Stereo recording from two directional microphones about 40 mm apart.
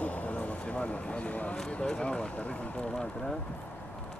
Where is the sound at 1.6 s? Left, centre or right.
Left.